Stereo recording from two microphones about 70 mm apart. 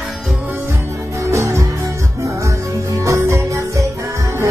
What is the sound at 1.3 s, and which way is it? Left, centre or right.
Music, right.